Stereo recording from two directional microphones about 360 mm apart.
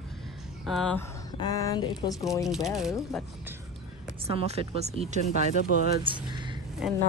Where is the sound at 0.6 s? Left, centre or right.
Centre.